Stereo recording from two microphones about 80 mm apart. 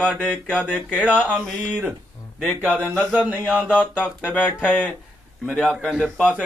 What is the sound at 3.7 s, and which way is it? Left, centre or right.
Speech, left.